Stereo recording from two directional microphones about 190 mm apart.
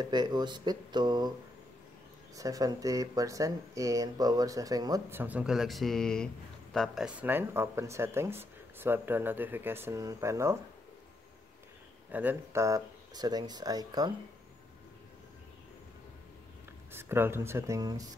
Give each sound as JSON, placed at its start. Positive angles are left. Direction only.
{"t": 0.0, "sound": "speech", "side_deg": -20}
{"t": 2.3, "sound": "speech", "side_deg": -20}
{"t": 12.1, "sound": "speech", "side_deg": -10}
{"t": 16.9, "sound": "speech", "side_deg": -10}